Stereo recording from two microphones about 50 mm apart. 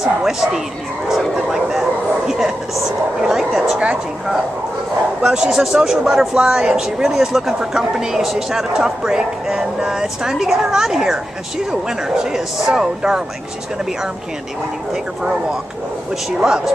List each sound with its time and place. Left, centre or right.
0.0 s speech: centre
1.0 s bow-wow: centre
3.2 s speech: centre
5.2 s speech: centre
12.2 s speech: centre
16.3 s speech: centre